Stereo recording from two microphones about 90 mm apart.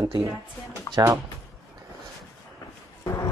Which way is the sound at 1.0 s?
45° right (ahead or behind).